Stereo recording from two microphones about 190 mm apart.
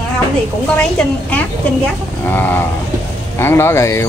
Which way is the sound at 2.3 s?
10° left (ahead or behind).